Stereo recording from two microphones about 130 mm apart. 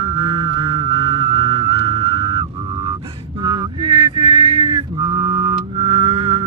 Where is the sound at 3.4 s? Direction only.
35° right (ahead or behind).